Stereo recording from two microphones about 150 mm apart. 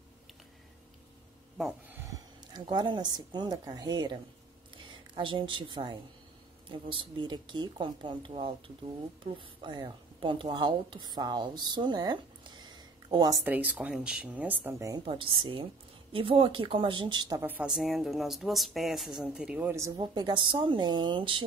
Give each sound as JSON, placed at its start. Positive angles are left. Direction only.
{"t": 1.6, "sound": "speech", "side_deg": 0}
{"t": 2.0, "sound": "a woman's voice", "side_deg": -25}
{"t": 9.6, "sound": "a woman's voice", "side_deg": -30}
{"t": 13.4, "sound": "speech", "side_deg": -10}
{"t": 15.0, "sound": "speech", "side_deg": -35}
{"t": 17.4, "sound": "speech", "side_deg": -10}
{"t": 20.0, "sound": "speech", "side_deg": -30}